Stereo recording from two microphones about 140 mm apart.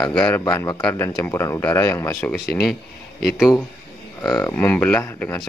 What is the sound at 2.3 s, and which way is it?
Speech, centre (ahead or behind).